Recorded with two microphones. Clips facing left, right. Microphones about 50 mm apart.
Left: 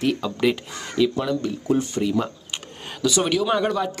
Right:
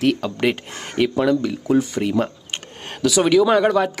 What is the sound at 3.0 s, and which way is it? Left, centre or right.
Speech, right.